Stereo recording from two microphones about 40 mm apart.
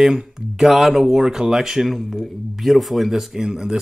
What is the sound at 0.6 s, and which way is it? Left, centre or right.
Speech, centre.